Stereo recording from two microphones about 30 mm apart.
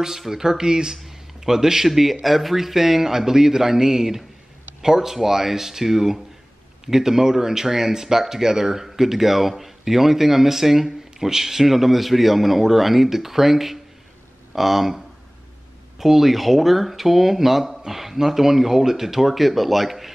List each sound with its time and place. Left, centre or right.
0.3 s speech: centre
1.0 s a sound: centre
1.9 s speech: centre